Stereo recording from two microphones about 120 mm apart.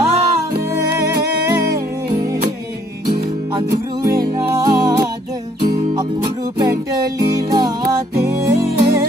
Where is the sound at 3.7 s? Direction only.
30° right (ahead or behind).